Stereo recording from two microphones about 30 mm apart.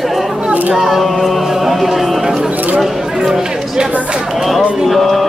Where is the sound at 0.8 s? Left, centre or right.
Centre.